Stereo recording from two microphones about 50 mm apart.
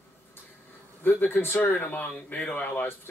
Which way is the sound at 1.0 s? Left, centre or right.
Left.